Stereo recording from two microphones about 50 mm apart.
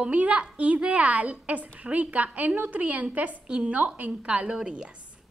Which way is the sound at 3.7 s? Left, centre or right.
Right.